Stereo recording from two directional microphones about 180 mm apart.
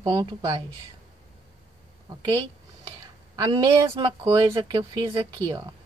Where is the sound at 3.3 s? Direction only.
20° right (ahead or behind).